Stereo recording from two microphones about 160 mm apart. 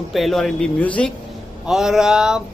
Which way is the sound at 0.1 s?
Centre (ahead or behind).